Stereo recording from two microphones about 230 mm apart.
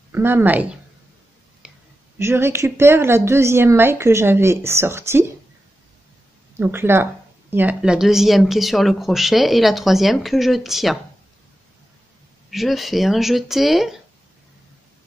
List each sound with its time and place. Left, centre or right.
0.1 s a woman's voice: centre
1.6 s a sound: centre
2.1 s a woman's voice: centre
6.5 s a woman's voice: centre
12.4 s speech: centre